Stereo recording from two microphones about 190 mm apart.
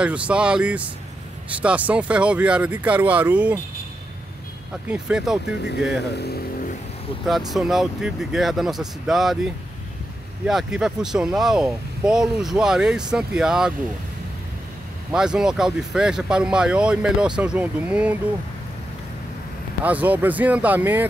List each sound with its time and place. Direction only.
0.0 s speech: 5° right (ahead or behind)
4.8 s speech: 5° right (ahead or behind)
6.1 s speech: 60° left (ahead or behind)
7.2 s speech: centre (ahead or behind)
15.1 s speech: 5° right (ahead or behind)
19.8 s speech: 10° right (ahead or behind)